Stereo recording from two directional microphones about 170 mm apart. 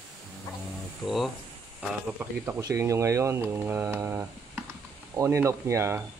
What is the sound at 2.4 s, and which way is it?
Speech, 15° right (ahead or behind).